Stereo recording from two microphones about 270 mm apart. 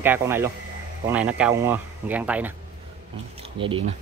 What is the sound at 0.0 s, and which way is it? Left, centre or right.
Speech, centre.